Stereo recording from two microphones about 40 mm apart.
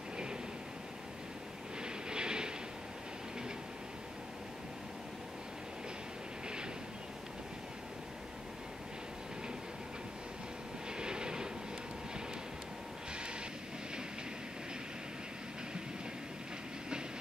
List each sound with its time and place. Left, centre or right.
1.8 s vehicle: right
10.9 s vehicle: right